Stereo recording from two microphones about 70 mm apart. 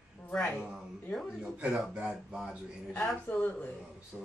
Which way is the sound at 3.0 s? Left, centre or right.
Left.